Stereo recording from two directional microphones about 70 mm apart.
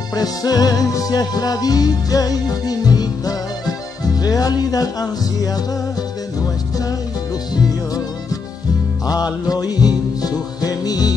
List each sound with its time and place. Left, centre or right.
0.1 s music: left
9.0 s music: left